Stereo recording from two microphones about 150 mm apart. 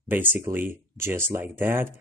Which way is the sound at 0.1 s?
15° right (ahead or behind).